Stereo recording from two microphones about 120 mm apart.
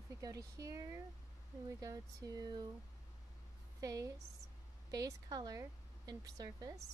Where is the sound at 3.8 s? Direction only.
30° right (ahead or behind).